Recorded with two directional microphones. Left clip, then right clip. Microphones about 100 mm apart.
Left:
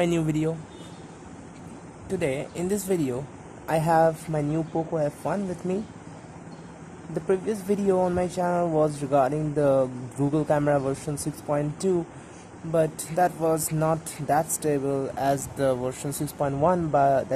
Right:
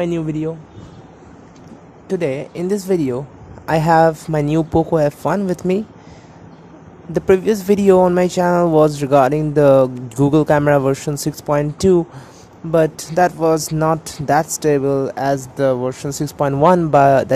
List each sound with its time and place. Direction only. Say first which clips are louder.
0.0 s speech: right 4 dB; 30° right (ahead or behind)
2.0 s speech: right 7 dB; 55° right (ahead or behind); by 4.5 s 70° right (ahead or behind)
4.9 s speech: right 11 dB; 90° right
7.2 s speech: right 12 dB; 90° right